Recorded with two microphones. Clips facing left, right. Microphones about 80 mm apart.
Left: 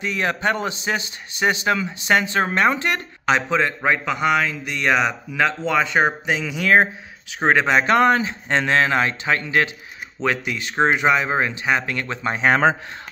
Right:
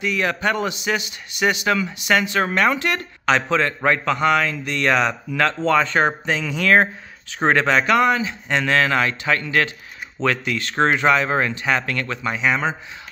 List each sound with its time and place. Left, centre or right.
0.0 s a man's voice: left
3.3 s a man's voice: centre
7.8 s a man's voice: left
12.2 s a man's voice: left